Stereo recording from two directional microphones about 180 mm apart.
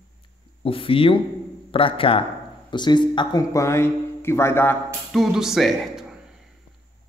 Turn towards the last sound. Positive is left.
turn(degrees=0)  # may be behind; listen again after turning